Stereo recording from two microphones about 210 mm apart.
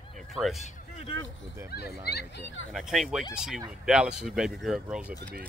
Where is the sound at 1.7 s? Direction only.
50° left (ahead or behind).